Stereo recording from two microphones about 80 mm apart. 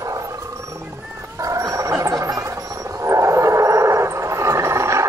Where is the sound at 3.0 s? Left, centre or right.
Right.